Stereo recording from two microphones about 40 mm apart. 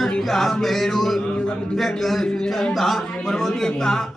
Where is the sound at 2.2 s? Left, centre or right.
Centre.